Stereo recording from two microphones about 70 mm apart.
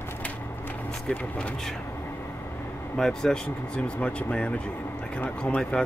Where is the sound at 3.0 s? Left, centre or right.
Centre; by 5.6 s left.